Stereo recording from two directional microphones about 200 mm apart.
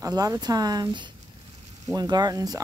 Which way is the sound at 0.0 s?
20° right (ahead or behind).